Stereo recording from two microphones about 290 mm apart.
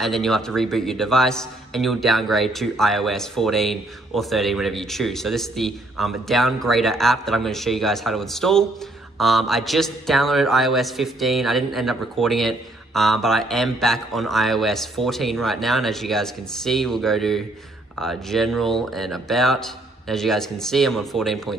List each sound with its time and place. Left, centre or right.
0.0 s a man's voice: centre